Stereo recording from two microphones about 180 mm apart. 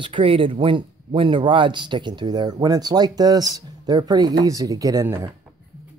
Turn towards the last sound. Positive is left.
turn(degrees=-15)  # may be behind; listen again after turning